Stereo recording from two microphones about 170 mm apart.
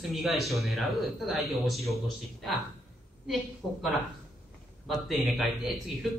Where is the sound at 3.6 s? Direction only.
Centre (ahead or behind).